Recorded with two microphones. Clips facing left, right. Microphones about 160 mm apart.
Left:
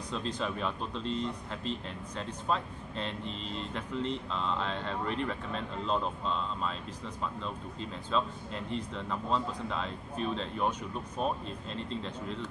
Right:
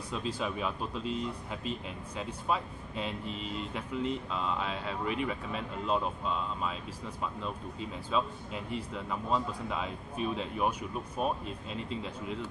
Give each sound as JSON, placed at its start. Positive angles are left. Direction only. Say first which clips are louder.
{"t": 0.1, "sound": "speech", "louder": "even", "side_deg": -5}